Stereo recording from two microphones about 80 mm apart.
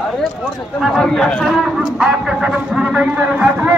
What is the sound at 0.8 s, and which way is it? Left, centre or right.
Speech, centre.